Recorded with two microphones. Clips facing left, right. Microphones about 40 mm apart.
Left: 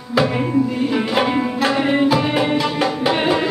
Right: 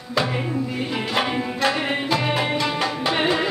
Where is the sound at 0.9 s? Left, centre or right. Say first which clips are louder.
Left 4 dB; centre.